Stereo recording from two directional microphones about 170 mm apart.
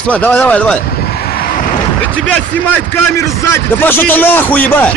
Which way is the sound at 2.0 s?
10° left (ahead or behind).